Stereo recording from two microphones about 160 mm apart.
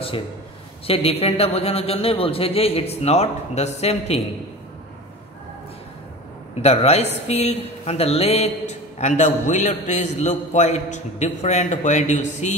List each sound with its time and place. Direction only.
0.8 s a man's voice: 35° left (ahead or behind)
6.6 s a woman's voice: 40° left (ahead or behind)